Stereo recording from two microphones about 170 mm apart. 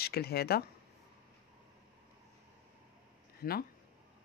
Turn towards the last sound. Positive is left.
turn(degrees=55)  # may be behind; listen again after turning